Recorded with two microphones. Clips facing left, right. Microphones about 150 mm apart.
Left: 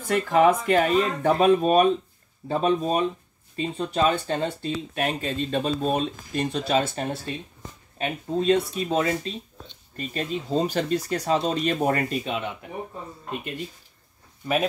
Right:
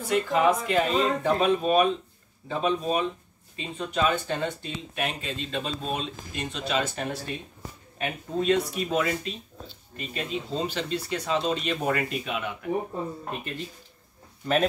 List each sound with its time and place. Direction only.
0.1 s speech: 50° left (ahead or behind); by 9.3 s 30° left (ahead or behind)
9.9 s speech: 45° left (ahead or behind)
13.3 s speech: 20° left (ahead or behind)